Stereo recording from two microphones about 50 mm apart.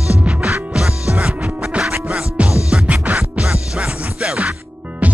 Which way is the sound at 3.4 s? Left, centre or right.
Centre.